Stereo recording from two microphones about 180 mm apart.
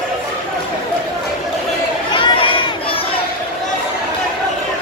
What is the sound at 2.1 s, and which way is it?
Crowd, 30° left (ahead or behind).